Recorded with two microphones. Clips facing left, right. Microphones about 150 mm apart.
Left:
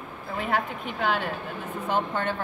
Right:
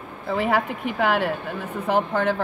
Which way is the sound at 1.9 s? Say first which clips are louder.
Right 5 dB; 90° right.